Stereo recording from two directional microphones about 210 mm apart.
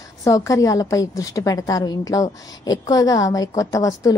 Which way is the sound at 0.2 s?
15° left (ahead or behind).